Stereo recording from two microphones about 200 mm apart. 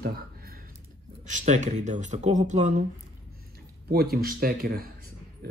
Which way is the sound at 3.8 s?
50° right (ahead or behind).